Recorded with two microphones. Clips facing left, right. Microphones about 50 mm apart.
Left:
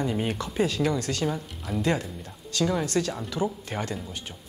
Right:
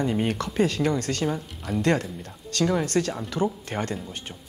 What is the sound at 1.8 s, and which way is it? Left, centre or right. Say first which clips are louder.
A woman's voice: right 3 dB; right.